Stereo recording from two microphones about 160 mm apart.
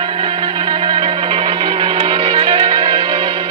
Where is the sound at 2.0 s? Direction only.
35° right (ahead or behind).